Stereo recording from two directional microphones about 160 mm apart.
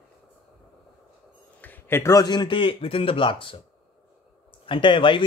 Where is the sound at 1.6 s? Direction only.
15° left (ahead or behind); by 3.6 s 30° left (ahead or behind).